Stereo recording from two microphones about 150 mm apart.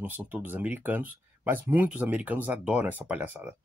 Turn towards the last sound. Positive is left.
turn(degrees=-10)  # may be behind; listen again after turning